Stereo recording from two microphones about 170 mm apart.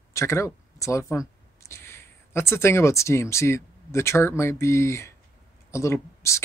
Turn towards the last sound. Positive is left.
turn(degrees=15)  # may be behind; listen again after turning